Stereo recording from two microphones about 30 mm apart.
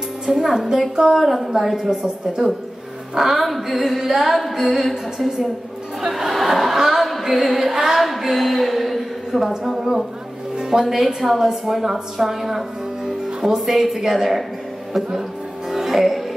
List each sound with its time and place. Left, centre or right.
0.3 s a woman's voice: centre
0.6 s a woman's voice: centre
3.2 s music: centre
6.4 s a sound: centre
10.6 s music: right
11.1 s a woman's voice: centre
15.7 s music: centre